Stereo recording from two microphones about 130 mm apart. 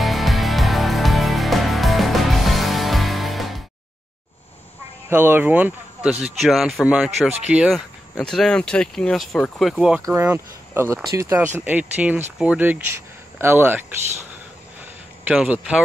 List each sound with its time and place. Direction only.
0.0 s music: centre (ahead or behind)
5.1 s speech: 15° right (ahead or behind)
6.2 s speech: centre (ahead or behind)
8.2 s speech: 5° left (ahead or behind)
10.0 s speech: 20° right (ahead or behind)
15.2 s speech: 10° right (ahead or behind)